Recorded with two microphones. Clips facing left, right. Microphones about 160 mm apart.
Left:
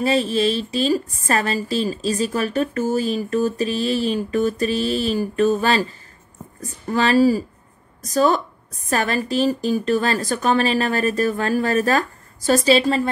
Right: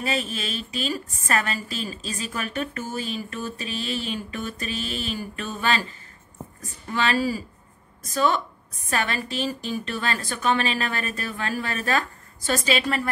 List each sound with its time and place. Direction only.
0.0 s a woman's voice: 35° left (ahead or behind)
6.9 s a woman's voice: 40° left (ahead or behind)